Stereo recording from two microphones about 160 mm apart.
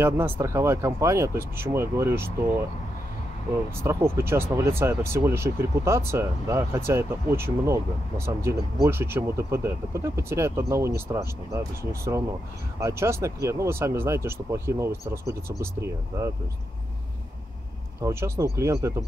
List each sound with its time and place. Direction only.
0.0 s speech: 15° right (ahead or behind)
3.8 s speech: 15° right (ahead or behind)
18.0 s speech: 20° right (ahead or behind)